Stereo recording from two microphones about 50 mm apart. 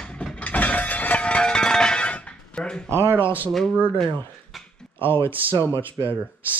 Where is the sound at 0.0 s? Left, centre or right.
Left.